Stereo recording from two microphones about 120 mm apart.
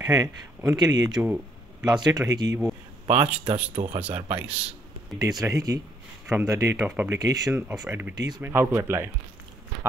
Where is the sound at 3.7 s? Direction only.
55° right (ahead or behind).